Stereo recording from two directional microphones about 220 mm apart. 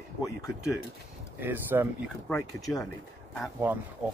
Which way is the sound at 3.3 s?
5° right (ahead or behind).